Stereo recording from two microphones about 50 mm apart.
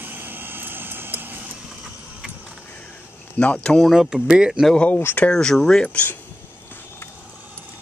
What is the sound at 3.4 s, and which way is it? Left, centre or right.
Speech, left.